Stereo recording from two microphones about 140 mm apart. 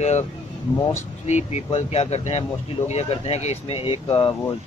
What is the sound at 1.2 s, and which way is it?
Speech, 55° left (ahead or behind).